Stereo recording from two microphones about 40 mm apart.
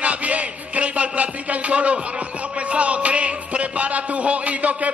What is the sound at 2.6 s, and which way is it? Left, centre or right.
A man's voice, right.